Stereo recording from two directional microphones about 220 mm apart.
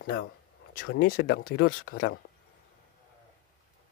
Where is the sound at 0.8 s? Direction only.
40° left (ahead or behind).